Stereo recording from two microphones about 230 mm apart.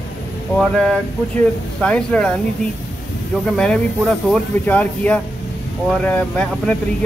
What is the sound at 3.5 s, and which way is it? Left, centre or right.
Speech, centre.